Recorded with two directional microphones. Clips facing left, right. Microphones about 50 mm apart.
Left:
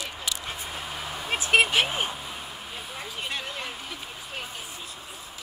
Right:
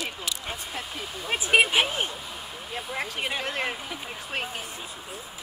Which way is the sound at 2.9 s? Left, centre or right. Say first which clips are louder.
Right 4 dB; right.